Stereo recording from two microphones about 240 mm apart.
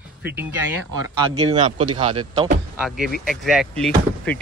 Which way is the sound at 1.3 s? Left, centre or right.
Right.